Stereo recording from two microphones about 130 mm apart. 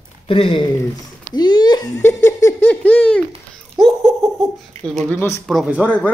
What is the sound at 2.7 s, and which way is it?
Laughter, 10° left (ahead or behind).